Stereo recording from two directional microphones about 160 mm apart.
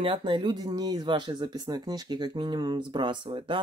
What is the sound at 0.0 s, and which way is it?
Speech, 35° right (ahead or behind).